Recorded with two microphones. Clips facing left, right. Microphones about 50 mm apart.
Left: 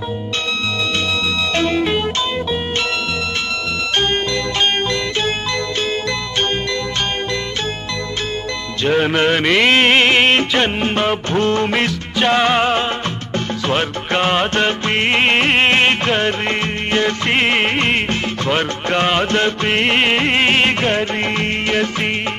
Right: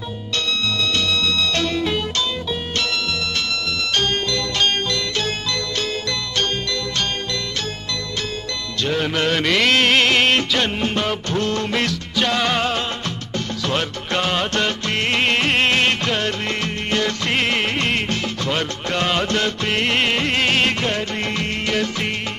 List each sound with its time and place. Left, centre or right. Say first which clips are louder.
1.5 s music: left 4 dB; left
4.0 s music: left 3 dB; left
8.8 s music: left 6 dB; left